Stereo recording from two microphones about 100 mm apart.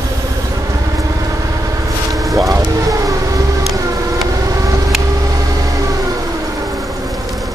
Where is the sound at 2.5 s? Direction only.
35° right (ahead or behind).